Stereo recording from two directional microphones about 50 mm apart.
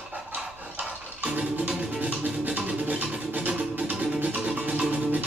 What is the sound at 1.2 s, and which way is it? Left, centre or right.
Music, right.